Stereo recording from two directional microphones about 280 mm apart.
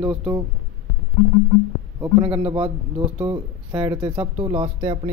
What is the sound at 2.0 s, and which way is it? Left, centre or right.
Speech, centre.